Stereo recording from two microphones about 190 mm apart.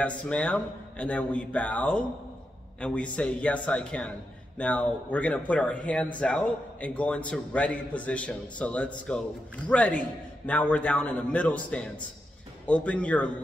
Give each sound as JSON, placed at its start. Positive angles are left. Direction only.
{"t": 0.0, "sound": "a man's voice", "side_deg": 5}